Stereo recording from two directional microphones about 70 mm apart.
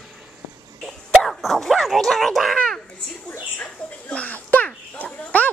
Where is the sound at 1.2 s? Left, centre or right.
Centre.